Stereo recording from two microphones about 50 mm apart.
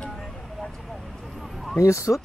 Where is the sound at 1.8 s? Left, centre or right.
Left.